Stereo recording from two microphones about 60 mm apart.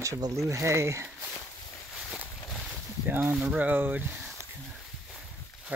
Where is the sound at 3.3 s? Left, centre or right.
Right.